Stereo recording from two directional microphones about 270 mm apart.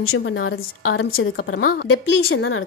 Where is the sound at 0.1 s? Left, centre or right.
Left.